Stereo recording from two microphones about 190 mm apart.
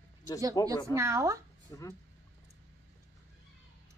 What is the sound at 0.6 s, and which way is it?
Speech, 20° left (ahead or behind).